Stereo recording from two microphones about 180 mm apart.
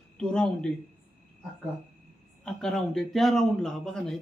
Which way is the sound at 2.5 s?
Centre (ahead or behind).